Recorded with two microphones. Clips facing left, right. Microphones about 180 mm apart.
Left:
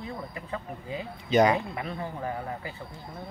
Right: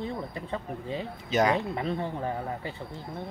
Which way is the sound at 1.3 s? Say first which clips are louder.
Left 3 dB; centre (ahead or behind).